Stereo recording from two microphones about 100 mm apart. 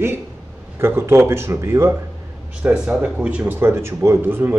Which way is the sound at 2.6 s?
10° right (ahead or behind).